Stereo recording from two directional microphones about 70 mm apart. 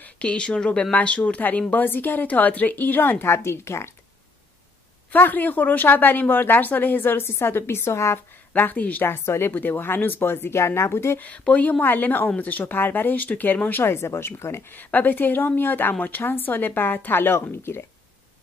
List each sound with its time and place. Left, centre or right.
0.0 s speech: centre
3.3 s speech: left
5.1 s speech: left
8.5 s speech: left
11.1 s speech: centre; by 17.8 s left